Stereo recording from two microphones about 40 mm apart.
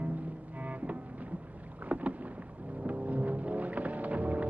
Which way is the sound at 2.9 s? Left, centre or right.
Right.